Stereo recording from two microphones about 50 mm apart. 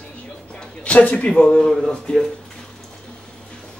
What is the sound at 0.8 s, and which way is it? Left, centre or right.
A man's voice, left.